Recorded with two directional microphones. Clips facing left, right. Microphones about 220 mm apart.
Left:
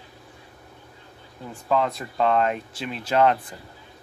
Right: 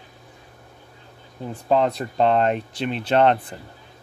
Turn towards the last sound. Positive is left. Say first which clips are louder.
# right 2 dB
turn(degrees=-30)  # may be behind; listen again after turning